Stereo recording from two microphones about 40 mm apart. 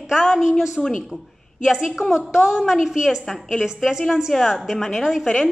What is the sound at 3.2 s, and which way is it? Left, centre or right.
Speech, centre.